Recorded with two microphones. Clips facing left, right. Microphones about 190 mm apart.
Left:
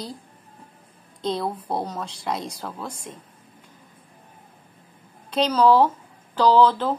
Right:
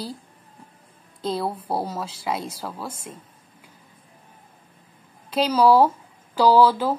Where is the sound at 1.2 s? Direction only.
5° right (ahead or behind).